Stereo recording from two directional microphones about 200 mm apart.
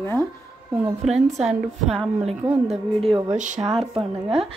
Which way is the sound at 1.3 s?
35° right (ahead or behind).